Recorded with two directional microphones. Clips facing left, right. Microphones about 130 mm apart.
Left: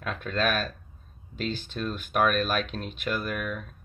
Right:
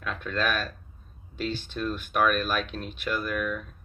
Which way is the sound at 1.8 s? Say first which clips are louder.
Even; 25° left (ahead or behind).